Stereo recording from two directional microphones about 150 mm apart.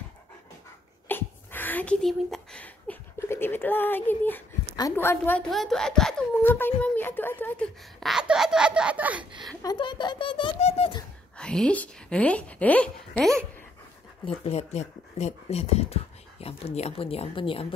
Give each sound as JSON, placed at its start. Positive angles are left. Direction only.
{"t": 1.0, "sound": "a sound", "side_deg": 15}
{"t": 4.9, "sound": "a woman's voice", "side_deg": 15}
{"t": 5.5, "sound": "a woman's voice", "side_deg": 0}
{"t": 8.0, "sound": "speech", "side_deg": -5}
{"t": 9.2, "sound": "a woman's voice", "side_deg": -30}
{"t": 9.6, "sound": "speech", "side_deg": 30}
{"t": 11.3, "sound": "a woman's voice", "side_deg": 5}
{"t": 14.2, "sound": "speech", "side_deg": 45}